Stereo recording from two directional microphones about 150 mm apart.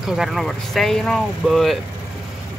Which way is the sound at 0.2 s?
Centre (ahead or behind).